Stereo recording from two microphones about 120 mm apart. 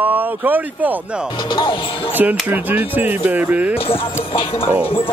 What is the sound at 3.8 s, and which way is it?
Speech, 50° left (ahead or behind).